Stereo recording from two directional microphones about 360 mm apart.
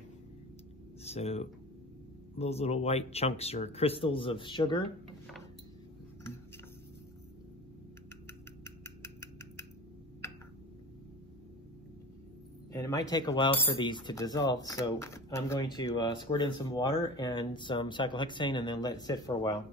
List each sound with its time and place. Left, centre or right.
1.0 s speech: centre
8.6 s a sound: centre
12.7 s speech: centre